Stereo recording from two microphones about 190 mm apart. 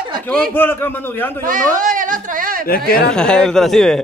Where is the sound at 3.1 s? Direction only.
5° left (ahead or behind).